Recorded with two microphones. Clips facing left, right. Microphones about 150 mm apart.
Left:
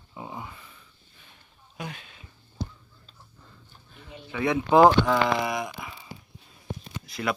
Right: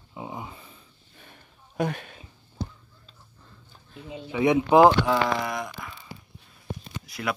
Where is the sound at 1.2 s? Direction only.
50° right (ahead or behind).